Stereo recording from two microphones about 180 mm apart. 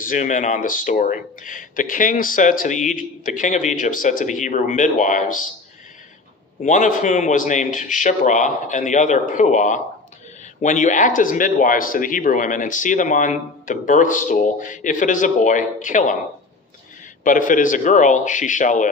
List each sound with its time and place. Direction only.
0.0 s speech: 45° left (ahead or behind)
6.6 s speech: 45° left (ahead or behind)
17.2 s speech: 45° left (ahead or behind)